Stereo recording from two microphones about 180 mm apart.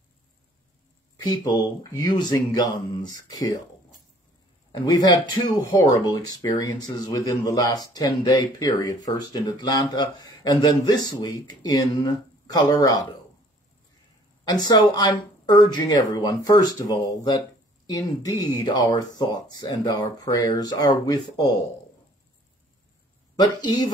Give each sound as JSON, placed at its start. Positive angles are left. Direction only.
{"t": 1.2, "sound": "speech", "side_deg": 20}
{"t": 5.9, "sound": "speech", "side_deg": 20}
{"t": 14.5, "sound": "speech", "side_deg": 20}
{"t": 23.3, "sound": "speech", "side_deg": 25}